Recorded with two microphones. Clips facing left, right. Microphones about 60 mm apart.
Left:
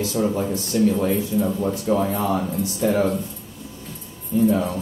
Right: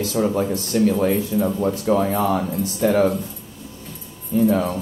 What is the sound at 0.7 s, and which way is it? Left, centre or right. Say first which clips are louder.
Speech: right 1 dB; right.